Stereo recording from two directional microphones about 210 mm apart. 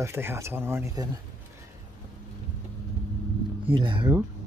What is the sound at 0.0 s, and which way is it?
Speech, 10° right (ahead or behind).